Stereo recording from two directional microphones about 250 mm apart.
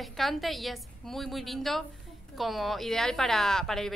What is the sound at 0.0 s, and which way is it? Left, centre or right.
A woman's voice, centre.